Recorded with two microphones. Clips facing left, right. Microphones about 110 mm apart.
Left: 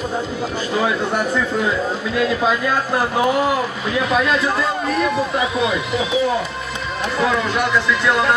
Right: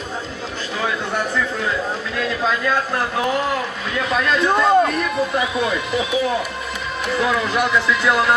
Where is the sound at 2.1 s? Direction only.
10° left (ahead or behind).